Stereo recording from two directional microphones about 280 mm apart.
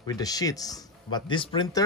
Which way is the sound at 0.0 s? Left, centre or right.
Centre.